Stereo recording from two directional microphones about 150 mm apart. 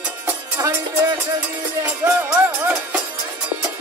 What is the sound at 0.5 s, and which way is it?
Music, 20° right (ahead or behind).